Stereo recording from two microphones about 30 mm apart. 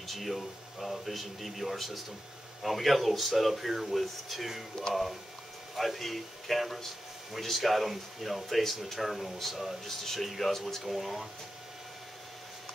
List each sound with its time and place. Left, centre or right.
0.0 s speech: centre
5.8 s speech: centre